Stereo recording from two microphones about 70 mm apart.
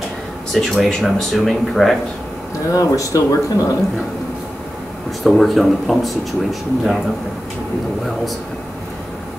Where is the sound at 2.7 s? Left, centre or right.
Left.